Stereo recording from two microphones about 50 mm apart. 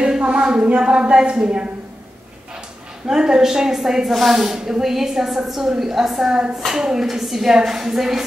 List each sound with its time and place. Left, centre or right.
0.0 s a sound: centre
0.7 s speech: right
3.1 s a woman's voice: centre